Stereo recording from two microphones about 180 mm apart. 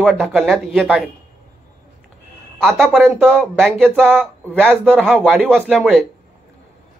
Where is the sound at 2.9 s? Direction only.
10° right (ahead or behind).